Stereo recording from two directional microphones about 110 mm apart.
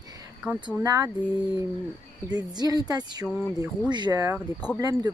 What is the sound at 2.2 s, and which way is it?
Speech, 40° right (ahead or behind).